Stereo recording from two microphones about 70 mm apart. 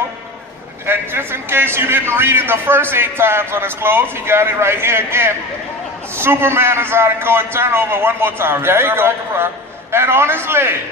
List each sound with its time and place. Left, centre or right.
0.8 s a man's voice: right